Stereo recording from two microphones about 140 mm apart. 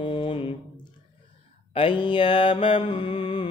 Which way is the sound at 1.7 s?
35° left (ahead or behind).